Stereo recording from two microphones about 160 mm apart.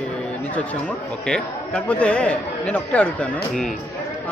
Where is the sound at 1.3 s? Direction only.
5° left (ahead or behind).